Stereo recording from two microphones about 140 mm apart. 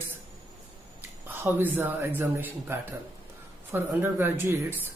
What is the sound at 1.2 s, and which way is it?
Speech, 15° right (ahead or behind).